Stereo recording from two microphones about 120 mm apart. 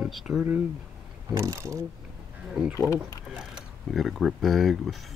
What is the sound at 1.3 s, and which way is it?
Speech, 25° right (ahead or behind).